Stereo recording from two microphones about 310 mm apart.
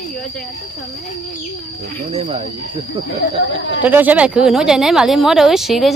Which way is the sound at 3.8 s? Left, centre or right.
Centre.